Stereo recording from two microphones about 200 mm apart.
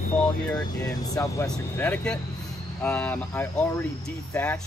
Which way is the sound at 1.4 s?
5° left (ahead or behind).